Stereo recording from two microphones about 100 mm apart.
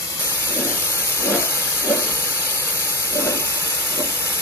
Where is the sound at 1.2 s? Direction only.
25° left (ahead or behind).